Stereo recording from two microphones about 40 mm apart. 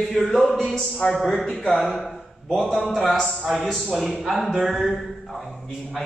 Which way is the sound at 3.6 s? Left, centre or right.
Centre.